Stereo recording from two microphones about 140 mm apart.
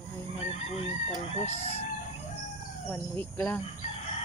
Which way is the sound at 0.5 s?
50° left (ahead or behind).